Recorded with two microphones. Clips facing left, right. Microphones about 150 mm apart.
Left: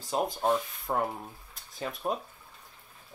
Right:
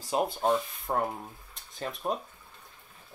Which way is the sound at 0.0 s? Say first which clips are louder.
Right 1 dB; 5° right (ahead or behind).